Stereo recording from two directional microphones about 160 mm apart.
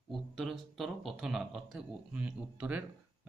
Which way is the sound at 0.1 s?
Centre (ahead or behind).